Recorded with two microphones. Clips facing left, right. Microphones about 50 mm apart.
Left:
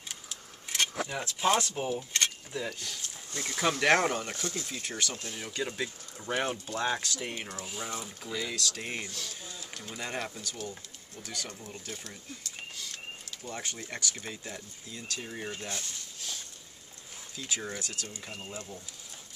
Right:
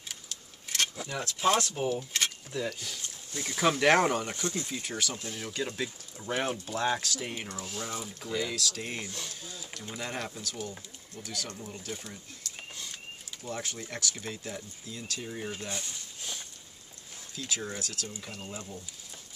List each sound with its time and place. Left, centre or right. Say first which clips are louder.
0.1 s keys jangling: left 1 dB; centre
1.0 s speech: right 2 dB; centre
13.4 s speech: right 3 dB; centre
16.2 s a sound: right 1 dB; centre
17.4 s speech: right 1 dB; centre